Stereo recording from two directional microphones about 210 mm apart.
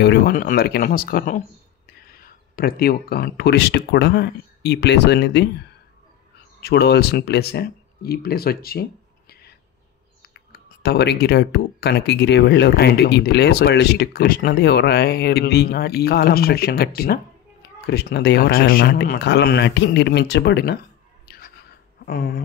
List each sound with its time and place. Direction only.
0.0 s speech: 50° left (ahead or behind)
6.6 s speech: 50° left (ahead or behind)
10.5 s speech: 50° left (ahead or behind)
21.3 s a sound: 50° left (ahead or behind)